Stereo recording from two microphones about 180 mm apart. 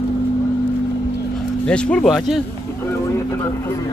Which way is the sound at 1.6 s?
5° left (ahead or behind).